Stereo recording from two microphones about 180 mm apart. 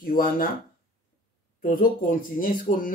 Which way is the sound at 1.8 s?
50° left (ahead or behind).